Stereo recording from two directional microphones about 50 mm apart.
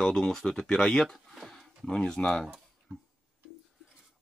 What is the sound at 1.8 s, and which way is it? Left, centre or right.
Speech, centre.